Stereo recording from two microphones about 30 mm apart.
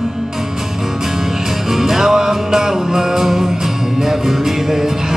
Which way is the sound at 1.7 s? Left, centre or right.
Centre.